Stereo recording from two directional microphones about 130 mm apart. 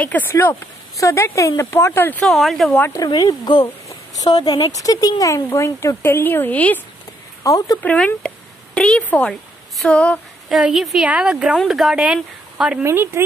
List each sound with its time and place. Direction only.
0.0 s speech: 15° left (ahead or behind)
2.2 s a woman's voice: centre (ahead or behind)
2.9 s speech: 30° left (ahead or behind); by 6.8 s 15° left (ahead or behind)
7.4 s speech: 25° left (ahead or behind)
7.8 s a woman's voice: 10° left (ahead or behind)
10.5 s a woman's voice: 5° right (ahead or behind)
12.8 s speech: 20° right (ahead or behind)